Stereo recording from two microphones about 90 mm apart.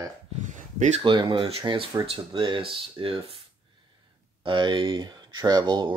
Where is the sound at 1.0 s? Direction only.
65° right (ahead or behind); by 3.4 s 90° right.